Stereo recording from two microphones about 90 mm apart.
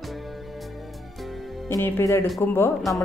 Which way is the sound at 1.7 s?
30° left (ahead or behind).